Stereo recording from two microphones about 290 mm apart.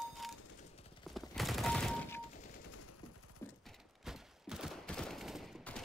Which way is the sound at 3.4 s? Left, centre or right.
Centre.